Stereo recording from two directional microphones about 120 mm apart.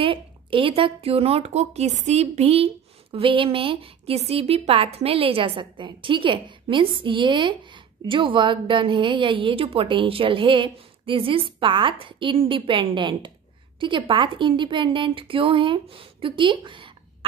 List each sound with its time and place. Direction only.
0.0 s a woman's voice: 50° right (ahead or behind)